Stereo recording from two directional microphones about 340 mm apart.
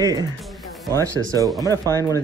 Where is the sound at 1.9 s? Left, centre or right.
Centre.